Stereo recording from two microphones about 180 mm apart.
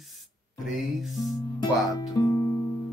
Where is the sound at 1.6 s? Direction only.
20° left (ahead or behind).